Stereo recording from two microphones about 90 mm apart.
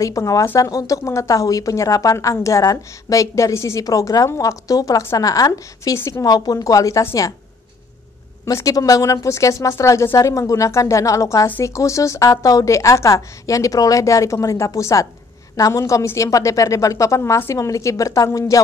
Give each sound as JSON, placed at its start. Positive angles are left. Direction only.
{"t": 0.0, "sound": "a woman's voice", "side_deg": 40}
{"t": 5.9, "sound": "a woman's voice", "side_deg": 30}
{"t": 6.2, "sound": "a woman's voice", "side_deg": 45}
{"t": 8.5, "sound": "a woman's voice", "side_deg": 40}